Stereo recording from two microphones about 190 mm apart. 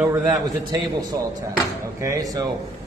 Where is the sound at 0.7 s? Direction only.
20° right (ahead or behind).